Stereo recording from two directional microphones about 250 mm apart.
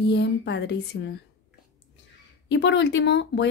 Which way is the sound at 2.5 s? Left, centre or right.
Left.